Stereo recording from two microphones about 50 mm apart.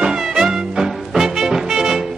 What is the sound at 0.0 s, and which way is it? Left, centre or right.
Music, centre.